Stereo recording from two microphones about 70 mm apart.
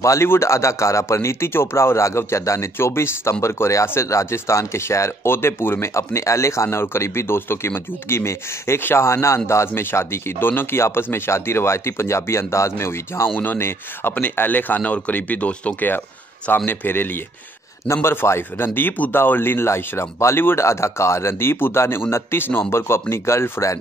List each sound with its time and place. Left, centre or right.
0.0 s speech: left